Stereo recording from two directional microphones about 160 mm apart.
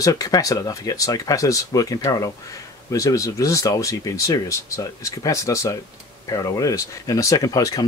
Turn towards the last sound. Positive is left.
turn(degrees=20)  # may be behind; listen again after turning